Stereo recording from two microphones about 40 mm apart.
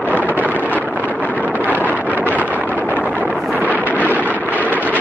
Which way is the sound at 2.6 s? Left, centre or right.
Left.